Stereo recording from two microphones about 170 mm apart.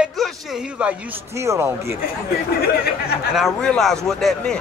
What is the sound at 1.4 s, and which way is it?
Speech, 15° right (ahead or behind).